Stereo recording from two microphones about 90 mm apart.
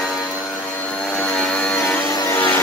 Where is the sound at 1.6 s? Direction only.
15° left (ahead or behind).